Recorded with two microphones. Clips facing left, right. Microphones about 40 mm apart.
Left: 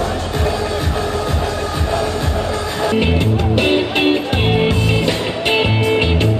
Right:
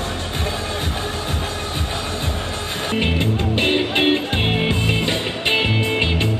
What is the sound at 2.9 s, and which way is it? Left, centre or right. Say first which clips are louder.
Music: left 1 dB; right.